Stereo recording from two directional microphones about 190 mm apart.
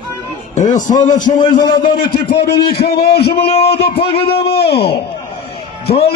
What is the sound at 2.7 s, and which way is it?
Speech, 55° left (ahead or behind).